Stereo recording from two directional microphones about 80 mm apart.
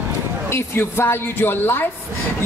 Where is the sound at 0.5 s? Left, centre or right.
Left.